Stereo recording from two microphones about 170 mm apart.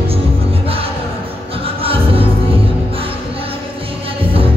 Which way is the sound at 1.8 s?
35° right (ahead or behind).